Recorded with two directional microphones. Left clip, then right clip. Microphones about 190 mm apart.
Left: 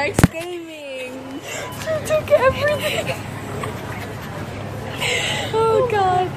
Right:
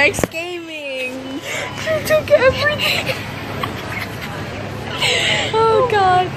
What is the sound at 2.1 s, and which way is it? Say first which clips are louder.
Speech: right 3 dB; 20° left (ahead or behind).